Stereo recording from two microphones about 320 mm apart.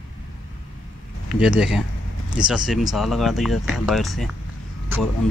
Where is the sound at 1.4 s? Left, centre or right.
Centre.